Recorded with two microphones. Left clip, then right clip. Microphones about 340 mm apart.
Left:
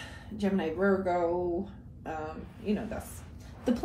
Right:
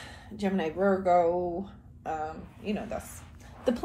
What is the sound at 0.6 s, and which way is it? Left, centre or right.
Speech, right.